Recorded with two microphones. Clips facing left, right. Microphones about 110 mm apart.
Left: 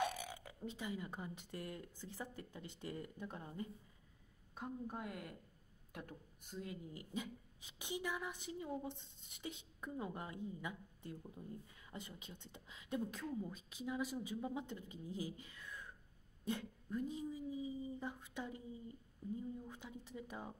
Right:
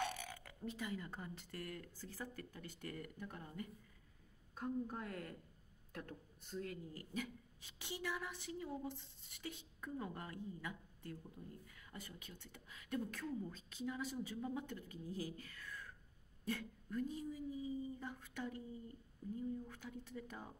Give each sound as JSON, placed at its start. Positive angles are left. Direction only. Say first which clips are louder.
{"t": 0.0, "sound": "speech", "louder": "left 3 dB", "side_deg": 15}
{"t": 4.8, "sound": "speech", "louder": "even", "side_deg": 15}